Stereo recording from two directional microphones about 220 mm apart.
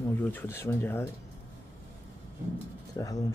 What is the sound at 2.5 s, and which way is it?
Speech, 15° left (ahead or behind).